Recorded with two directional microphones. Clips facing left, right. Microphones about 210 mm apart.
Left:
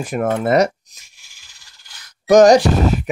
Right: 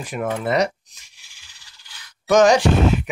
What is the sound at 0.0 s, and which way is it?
Speech, 45° left (ahead or behind).